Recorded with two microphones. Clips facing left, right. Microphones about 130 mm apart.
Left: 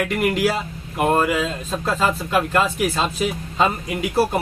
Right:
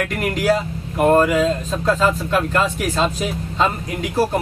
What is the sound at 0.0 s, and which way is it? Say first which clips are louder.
Speech: left 1 dB; 5° left (ahead or behind).